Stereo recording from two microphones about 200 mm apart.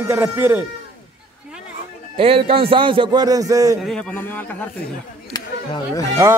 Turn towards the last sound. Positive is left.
turn(degrees=-15)  # may be behind; listen again after turning